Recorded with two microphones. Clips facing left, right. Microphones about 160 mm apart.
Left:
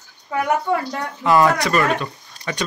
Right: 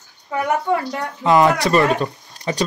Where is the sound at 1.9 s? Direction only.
35° right (ahead or behind).